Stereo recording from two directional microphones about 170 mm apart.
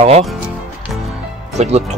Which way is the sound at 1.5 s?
40° right (ahead or behind).